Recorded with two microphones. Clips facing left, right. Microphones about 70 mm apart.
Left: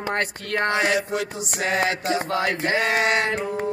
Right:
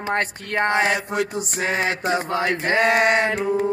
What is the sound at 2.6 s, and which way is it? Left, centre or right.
Speech, right.